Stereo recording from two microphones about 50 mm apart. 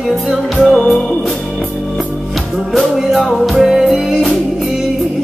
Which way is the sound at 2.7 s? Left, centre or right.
Centre.